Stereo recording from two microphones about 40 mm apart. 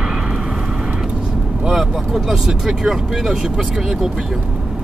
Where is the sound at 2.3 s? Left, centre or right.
Centre.